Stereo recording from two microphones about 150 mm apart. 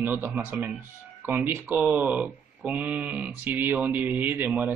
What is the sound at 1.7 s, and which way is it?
Speech, centre (ahead or behind).